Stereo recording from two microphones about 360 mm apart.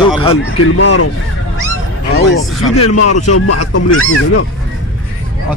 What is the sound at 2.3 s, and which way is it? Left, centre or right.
Speech, left.